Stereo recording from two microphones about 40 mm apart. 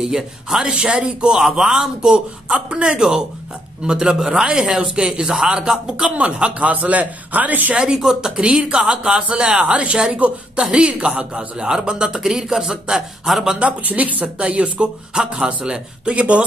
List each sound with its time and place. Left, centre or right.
0.0 s a man's voice: centre
1.5 s a man's voice: centre
2.0 s a man's voice: right
6.0 s speech: right
7.7 s a man's voice: right
8.4 s a man's voice: right
13.6 s speech: right